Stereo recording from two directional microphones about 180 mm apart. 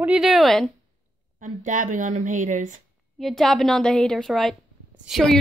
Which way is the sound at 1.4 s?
45° right (ahead or behind).